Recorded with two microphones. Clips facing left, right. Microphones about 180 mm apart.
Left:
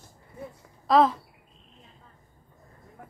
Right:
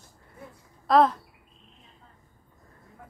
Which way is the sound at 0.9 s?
Centre (ahead or behind).